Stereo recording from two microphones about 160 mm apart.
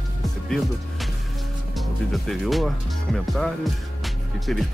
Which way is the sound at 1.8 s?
Centre (ahead or behind).